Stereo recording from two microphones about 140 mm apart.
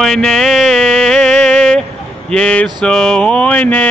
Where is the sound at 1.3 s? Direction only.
60° right (ahead or behind).